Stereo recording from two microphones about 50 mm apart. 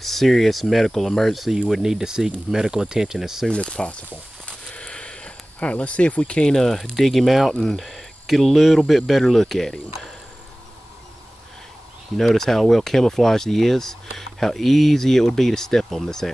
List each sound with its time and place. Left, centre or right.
0.0 s speech: centre
3.4 s speech: centre
4.1 s a sound: left
7.0 s speech: centre
12.2 s speech: centre